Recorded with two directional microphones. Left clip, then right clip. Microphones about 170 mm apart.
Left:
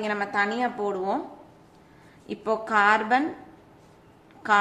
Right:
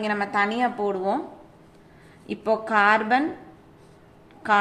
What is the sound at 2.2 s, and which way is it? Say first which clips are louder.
A woman's voice: right 3 dB; 10° right (ahead or behind).